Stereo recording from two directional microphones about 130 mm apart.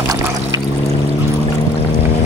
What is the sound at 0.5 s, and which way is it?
Pour, 30° right (ahead or behind).